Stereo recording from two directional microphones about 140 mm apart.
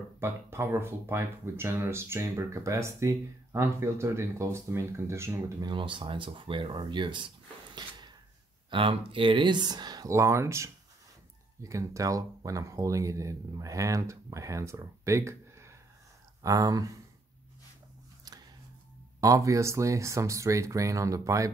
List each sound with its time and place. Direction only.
0.2 s speech: 15° right (ahead or behind)
5.7 s speech: 35° right (ahead or behind)
19.2 s speech: 25° right (ahead or behind)